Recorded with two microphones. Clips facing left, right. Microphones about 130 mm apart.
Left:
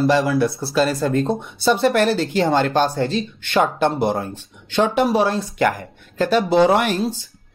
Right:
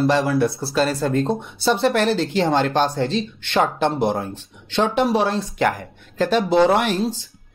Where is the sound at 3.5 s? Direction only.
5° left (ahead or behind).